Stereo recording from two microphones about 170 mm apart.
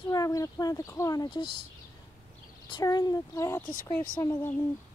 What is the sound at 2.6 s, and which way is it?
A child's voice, 25° left (ahead or behind).